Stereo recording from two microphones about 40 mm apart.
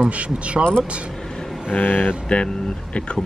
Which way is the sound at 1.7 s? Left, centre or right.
Left.